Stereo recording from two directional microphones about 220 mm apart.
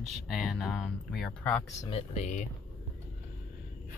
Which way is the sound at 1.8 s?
30° left (ahead or behind).